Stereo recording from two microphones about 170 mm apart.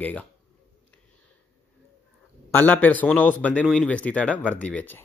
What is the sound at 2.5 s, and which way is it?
Speech, 10° left (ahead or behind).